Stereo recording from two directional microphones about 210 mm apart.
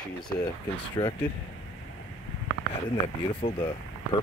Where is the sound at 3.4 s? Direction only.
25° left (ahead or behind).